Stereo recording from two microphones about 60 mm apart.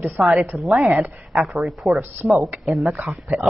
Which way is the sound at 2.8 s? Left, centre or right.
Right.